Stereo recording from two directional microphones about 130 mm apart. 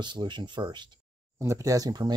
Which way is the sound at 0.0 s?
35° right (ahead or behind).